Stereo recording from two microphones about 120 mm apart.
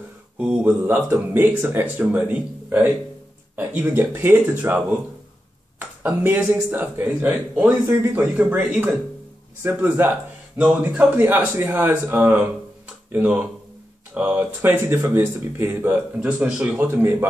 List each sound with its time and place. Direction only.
0.4 s speech: 10° right (ahead or behind)